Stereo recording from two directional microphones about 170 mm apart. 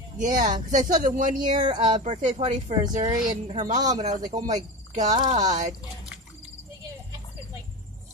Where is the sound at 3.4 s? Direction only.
45° right (ahead or behind).